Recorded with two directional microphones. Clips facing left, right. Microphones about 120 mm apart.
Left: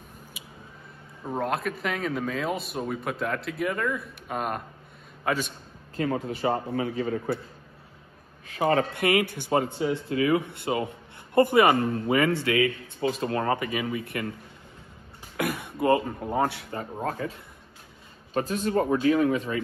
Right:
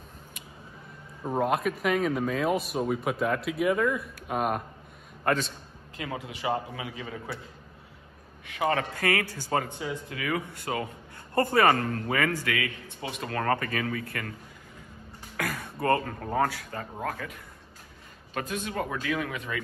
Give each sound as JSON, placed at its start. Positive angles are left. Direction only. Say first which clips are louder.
{"t": 0.3, "sound": "a sound", "louder": "left 1 dB", "side_deg": 5}
{"t": 1.2, "sound": "speech", "louder": "right 2 dB", "side_deg": -5}
{"t": 5.9, "sound": "a man's voice", "louder": "left 8 dB", "side_deg": 45}
{"t": 8.5, "sound": "speech", "louder": "left 4 dB", "side_deg": 35}
{"t": 8.9, "sound": "a man's voice", "louder": "left 4 dB", "side_deg": 20}
{"t": 9.7, "sound": "a man's voice", "louder": "left 7 dB", "side_deg": 30}
{"t": 15.3, "sound": "speech", "louder": "left 4 dB", "side_deg": 20}